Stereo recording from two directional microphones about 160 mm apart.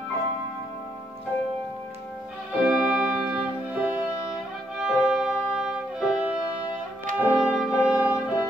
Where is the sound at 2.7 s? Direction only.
5° right (ahead or behind).